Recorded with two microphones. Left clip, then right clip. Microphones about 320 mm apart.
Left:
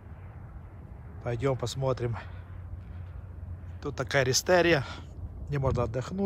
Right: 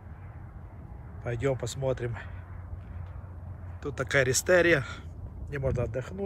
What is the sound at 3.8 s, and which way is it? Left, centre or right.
Speech, centre.